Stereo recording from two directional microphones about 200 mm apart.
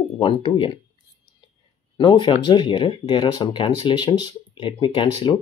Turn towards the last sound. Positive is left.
turn(degrees=25)  # may be behind; listen again after turning